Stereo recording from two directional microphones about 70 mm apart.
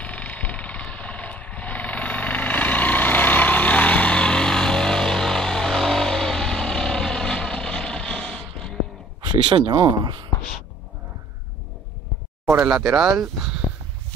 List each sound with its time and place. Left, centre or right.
0.0 s a sound: left
0.9 s vehicle: centre
9.3 s speech: right
12.6 s speech: centre